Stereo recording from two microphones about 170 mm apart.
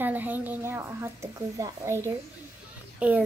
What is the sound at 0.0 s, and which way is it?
A woman's voice, 10° right (ahead or behind).